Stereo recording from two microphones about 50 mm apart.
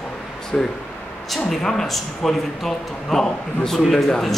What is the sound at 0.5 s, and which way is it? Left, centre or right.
A man's voice, centre.